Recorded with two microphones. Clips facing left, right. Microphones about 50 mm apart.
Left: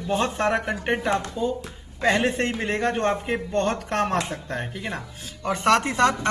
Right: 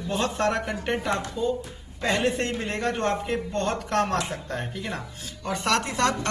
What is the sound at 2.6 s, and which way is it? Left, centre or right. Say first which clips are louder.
A man's voice: left 5 dB; centre.